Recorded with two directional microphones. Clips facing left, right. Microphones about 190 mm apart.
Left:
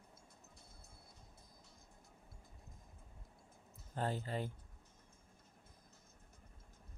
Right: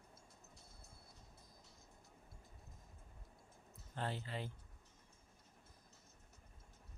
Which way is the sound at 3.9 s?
45° left (ahead or behind).